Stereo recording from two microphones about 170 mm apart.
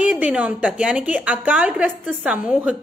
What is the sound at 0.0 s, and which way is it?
A woman's voice, 5° right (ahead or behind).